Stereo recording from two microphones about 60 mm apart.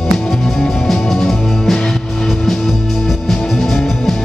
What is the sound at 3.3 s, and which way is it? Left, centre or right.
Music, centre.